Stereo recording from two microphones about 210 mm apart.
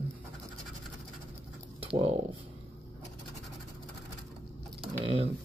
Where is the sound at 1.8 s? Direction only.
25° right (ahead or behind).